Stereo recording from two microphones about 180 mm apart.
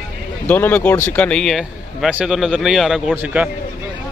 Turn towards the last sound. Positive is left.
turn(degrees=-5)  # may be behind; listen again after turning